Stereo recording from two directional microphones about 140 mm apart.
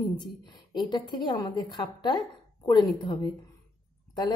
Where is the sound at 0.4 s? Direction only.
35° left (ahead or behind).